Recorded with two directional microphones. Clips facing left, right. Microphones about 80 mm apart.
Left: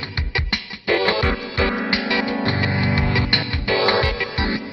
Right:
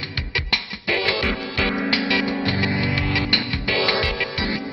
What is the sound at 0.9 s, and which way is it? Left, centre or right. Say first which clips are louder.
Music: left 4 dB; left.